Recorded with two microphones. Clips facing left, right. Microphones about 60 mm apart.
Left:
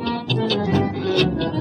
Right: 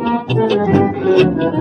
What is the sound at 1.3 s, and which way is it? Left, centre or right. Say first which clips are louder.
Music: right 7 dB; centre.